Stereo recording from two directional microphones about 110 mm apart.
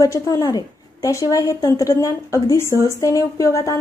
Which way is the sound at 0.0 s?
30° left (ahead or behind).